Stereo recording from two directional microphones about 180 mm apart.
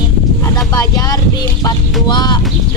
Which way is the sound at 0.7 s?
20° left (ahead or behind).